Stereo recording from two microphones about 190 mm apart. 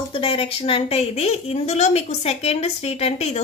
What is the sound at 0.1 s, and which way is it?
A woman's voice, 30° left (ahead or behind).